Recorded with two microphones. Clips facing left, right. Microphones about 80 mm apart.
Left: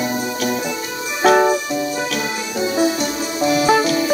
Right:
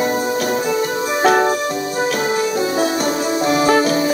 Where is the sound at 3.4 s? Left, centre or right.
Right.